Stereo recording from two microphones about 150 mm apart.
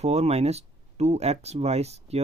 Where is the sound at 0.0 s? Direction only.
45° right (ahead or behind).